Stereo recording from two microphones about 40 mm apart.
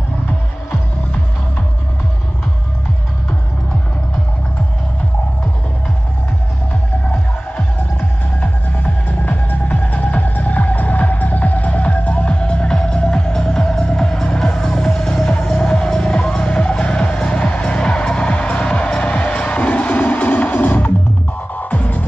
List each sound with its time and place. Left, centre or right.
8.4 s music: left
17.0 s music: left